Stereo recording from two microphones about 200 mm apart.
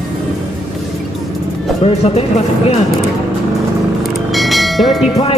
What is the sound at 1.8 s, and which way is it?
Music, 30° left (ahead or behind).